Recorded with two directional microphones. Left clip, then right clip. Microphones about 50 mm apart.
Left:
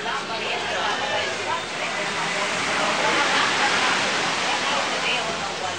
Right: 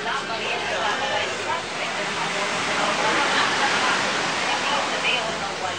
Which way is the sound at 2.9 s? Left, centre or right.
Left.